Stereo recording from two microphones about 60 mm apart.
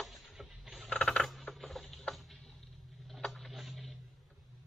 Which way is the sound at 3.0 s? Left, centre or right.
Centre.